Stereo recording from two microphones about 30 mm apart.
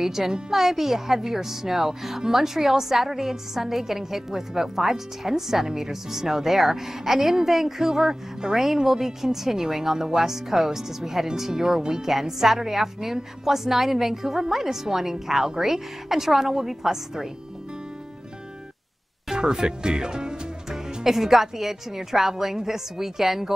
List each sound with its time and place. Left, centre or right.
0.0 s a woman's voice: centre
19.3 s speech: right
20.7 s speech: centre